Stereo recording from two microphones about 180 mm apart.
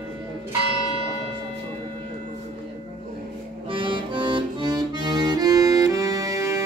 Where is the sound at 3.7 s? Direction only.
25° right (ahead or behind).